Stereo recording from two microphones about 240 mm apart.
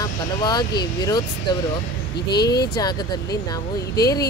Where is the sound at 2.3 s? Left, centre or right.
Left.